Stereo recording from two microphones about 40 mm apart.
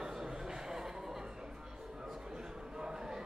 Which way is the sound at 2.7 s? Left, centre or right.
Centre.